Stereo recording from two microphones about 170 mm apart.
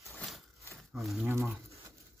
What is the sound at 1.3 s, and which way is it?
Speech, 15° right (ahead or behind).